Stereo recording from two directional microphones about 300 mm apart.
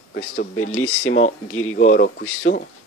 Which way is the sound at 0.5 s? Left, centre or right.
Left.